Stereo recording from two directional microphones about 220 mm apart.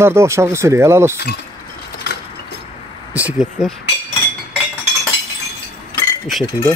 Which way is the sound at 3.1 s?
5° right (ahead or behind).